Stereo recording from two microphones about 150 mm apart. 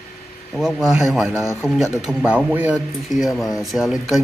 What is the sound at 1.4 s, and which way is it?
Speech, 15° left (ahead or behind).